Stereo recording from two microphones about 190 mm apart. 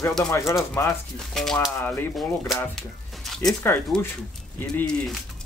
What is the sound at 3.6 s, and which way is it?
Speech, 10° left (ahead or behind).